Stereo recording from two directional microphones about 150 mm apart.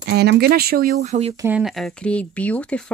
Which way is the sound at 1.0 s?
45° right (ahead or behind).